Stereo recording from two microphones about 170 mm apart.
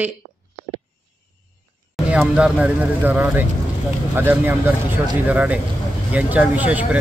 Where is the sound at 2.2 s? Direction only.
5° right (ahead or behind).